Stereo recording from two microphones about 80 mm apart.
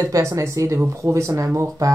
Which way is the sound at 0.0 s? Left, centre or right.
Right.